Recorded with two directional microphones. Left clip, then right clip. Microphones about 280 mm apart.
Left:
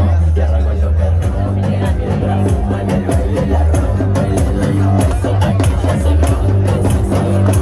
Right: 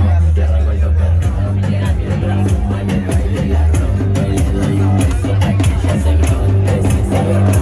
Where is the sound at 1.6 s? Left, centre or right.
Left.